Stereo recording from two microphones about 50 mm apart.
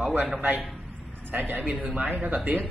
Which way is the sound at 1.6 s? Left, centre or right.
Right.